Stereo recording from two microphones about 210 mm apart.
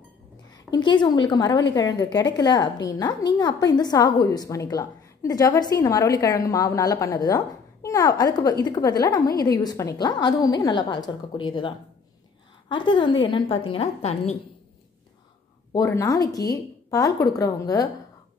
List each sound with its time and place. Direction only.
0.7 s a woman's voice: 20° left (ahead or behind)
15.7 s a woman's voice: 15° left (ahead or behind)